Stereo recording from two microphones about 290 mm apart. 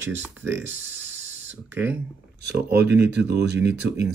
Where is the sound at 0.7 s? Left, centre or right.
Right.